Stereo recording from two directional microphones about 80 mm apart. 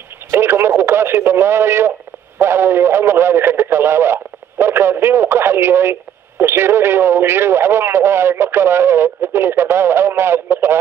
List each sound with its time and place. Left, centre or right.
0.3 s speech: right